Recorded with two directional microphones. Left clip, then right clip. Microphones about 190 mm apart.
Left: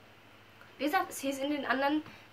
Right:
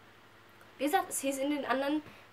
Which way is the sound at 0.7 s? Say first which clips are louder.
Even; 40° right (ahead or behind).